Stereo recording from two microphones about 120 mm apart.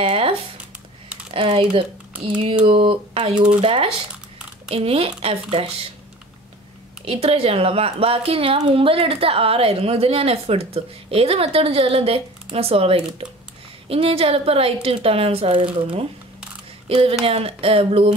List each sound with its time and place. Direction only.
0.0 s a sound: 55° right (ahead or behind)
1.3 s a woman's voice: 50° right (ahead or behind)
7.1 s a woman's voice: 50° right (ahead or behind)
17.2 s a woman's voice: 55° right (ahead or behind)